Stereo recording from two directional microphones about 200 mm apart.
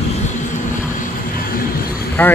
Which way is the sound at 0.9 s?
45° left (ahead or behind).